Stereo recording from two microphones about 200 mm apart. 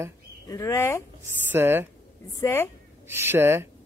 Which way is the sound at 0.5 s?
15° left (ahead or behind).